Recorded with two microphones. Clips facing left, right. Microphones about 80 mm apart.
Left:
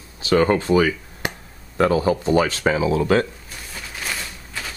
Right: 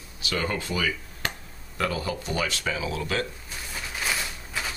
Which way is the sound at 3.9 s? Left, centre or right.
Centre.